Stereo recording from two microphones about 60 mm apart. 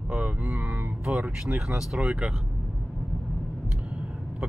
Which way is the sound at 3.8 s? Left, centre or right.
Right.